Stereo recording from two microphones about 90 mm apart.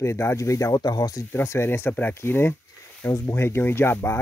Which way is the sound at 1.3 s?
30° left (ahead or behind).